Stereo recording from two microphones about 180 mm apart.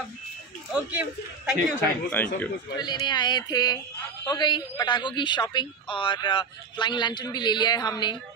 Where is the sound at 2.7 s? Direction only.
25° left (ahead or behind).